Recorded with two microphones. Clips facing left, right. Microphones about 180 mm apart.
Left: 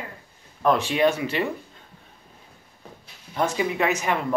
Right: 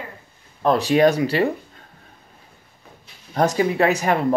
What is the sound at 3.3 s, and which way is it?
Speech, 40° right (ahead or behind).